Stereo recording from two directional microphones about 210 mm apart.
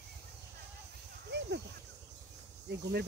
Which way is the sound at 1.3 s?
55° right (ahead or behind).